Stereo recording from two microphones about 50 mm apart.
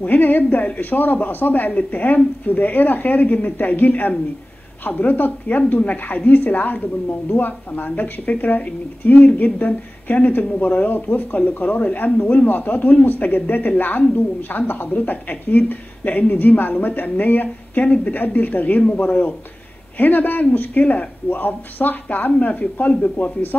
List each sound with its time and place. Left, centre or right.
0.0 s a woman's voice: left